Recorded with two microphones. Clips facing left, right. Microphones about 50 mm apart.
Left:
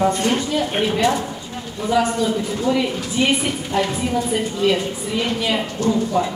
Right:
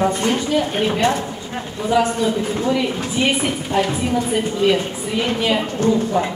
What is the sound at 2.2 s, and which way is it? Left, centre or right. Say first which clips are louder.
Speech: right 1 dB; right.